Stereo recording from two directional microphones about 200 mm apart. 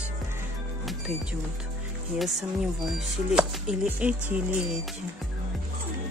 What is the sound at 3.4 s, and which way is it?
Speech, 5° right (ahead or behind).